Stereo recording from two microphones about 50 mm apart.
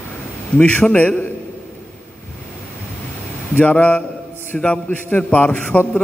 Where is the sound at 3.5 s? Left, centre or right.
Left.